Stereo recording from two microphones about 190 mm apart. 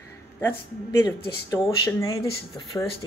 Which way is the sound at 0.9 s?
15° left (ahead or behind).